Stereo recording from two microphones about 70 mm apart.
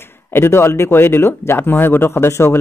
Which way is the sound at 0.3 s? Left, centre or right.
Left.